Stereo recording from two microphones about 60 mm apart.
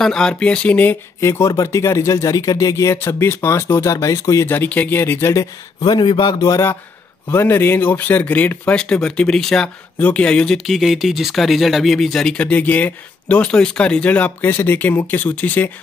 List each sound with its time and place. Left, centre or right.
0.0 s speech: centre
1.2 s speech: left
3.0 s speech: left
4.6 s speech: left
7.2 s speech: left
8.7 s speech: centre
9.9 s speech: left
10.7 s speech: centre
12.4 s speech: left